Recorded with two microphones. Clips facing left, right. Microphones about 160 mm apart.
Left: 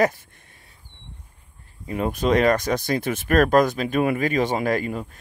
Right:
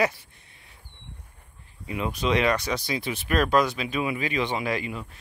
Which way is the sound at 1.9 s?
45° left (ahead or behind).